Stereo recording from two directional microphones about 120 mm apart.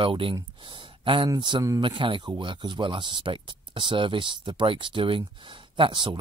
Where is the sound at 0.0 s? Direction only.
45° right (ahead or behind).